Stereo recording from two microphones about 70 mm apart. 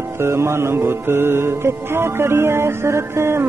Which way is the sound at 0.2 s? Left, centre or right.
Right.